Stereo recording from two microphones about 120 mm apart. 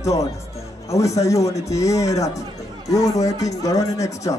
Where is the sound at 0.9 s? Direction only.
25° left (ahead or behind).